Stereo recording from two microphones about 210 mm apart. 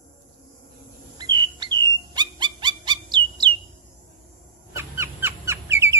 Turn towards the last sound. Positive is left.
turn(degrees=-10)  # may be behind; listen again after turning